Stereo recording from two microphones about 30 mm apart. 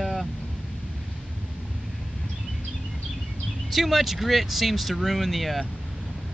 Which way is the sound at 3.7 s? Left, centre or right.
Centre.